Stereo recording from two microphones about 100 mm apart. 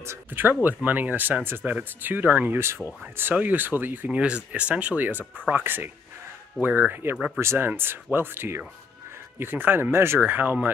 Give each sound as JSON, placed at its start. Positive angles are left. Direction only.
{"t": 0.0, "sound": "speech", "side_deg": -25}